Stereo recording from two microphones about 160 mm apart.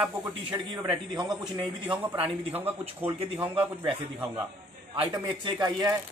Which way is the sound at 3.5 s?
10° right (ahead or behind).